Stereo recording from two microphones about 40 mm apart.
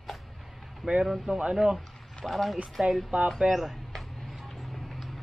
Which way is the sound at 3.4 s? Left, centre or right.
Centre.